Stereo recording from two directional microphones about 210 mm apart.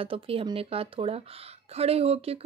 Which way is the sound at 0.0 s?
25° right (ahead or behind).